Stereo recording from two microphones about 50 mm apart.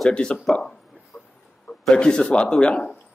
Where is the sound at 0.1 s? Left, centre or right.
Centre.